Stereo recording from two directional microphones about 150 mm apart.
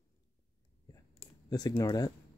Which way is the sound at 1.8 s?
25° left (ahead or behind).